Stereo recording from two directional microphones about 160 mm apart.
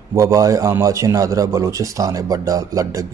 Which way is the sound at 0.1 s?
20° right (ahead or behind).